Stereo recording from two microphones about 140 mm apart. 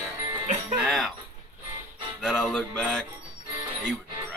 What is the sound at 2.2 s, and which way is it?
Music, 5° left (ahead or behind).